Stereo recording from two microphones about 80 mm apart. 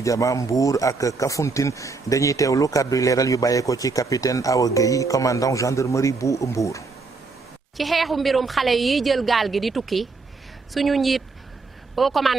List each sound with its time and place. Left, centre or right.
0.0 s speech: left
7.7 s a woman's voice: centre